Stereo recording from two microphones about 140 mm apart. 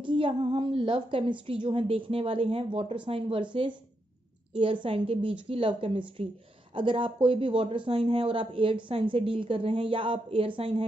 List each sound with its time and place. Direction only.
0.0 s speech: 35° right (ahead or behind)